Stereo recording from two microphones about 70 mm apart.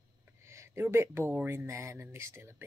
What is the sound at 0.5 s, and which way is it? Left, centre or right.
Speech, right.